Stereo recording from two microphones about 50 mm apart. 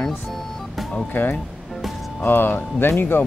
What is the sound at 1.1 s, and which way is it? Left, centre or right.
Speech, left.